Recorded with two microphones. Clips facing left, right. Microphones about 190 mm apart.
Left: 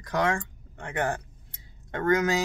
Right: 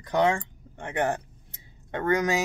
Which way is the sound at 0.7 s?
20° right (ahead or behind).